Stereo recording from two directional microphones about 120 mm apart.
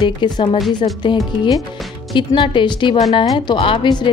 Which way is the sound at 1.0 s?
35° left (ahead or behind).